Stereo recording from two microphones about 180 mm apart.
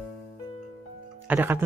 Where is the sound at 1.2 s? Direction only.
10° right (ahead or behind).